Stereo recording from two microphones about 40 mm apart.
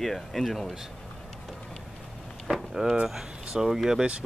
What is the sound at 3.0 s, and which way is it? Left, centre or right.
Speech, centre.